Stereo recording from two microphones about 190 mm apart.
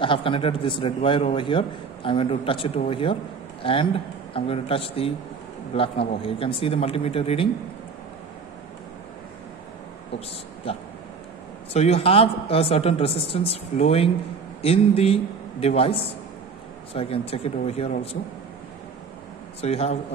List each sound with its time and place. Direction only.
0.0 s a man's voice: 25° left (ahead or behind)
11.7 s a woman's voice: 35° left (ahead or behind)
16.9 s a woman's voice: 30° left (ahead or behind)
19.6 s a woman's voice: 35° left (ahead or behind)